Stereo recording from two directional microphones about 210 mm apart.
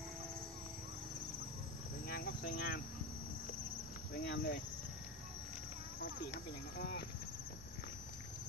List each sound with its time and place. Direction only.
2.4 s cricket: 40° left (ahead or behind)
4.1 s speech: 50° left (ahead or behind)
6.0 s speech: 55° left (ahead or behind)